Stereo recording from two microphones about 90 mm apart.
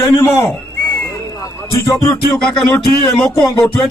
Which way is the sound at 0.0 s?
30° left (ahead or behind).